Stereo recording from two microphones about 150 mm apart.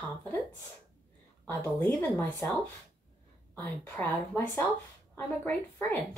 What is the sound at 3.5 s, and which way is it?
Speech, 15° left (ahead or behind).